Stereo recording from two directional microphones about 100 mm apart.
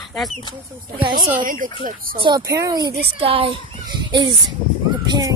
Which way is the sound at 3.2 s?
70° right (ahead or behind).